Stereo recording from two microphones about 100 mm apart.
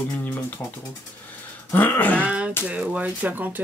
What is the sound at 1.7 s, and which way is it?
Speech, 20° left (ahead or behind).